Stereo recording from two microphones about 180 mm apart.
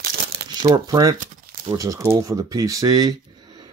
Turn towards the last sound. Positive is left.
turn(degrees=-20)  # may be behind; listen again after turning